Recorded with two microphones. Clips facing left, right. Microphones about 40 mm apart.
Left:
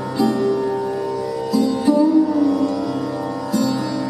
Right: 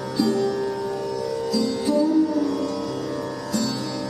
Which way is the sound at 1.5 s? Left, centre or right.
Left.